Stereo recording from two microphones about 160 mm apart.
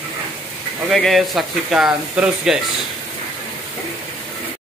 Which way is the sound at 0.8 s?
Centre (ahead or behind).